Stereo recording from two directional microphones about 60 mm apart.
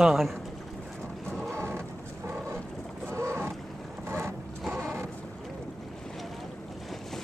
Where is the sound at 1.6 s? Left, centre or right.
Right.